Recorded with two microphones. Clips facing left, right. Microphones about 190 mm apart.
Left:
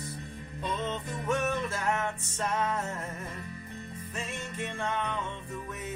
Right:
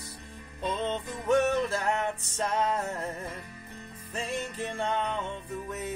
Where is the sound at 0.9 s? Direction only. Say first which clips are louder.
Right 7 dB; 35° right (ahead or behind).